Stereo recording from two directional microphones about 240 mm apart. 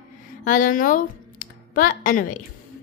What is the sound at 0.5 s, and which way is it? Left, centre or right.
Speech, left.